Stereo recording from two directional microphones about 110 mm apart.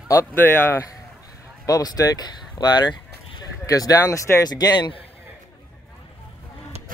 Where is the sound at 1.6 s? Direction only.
35° left (ahead or behind).